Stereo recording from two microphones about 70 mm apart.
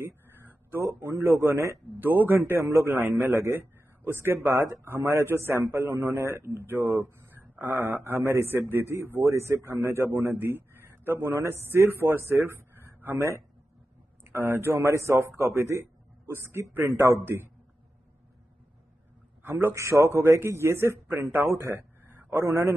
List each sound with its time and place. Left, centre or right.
0.0 s a sound: right
2.0 s a man's voice: right
14.2 s a man's voice: right
19.4 s a man's voice: right
19.7 s a man's voice: right
22.4 s a man's voice: right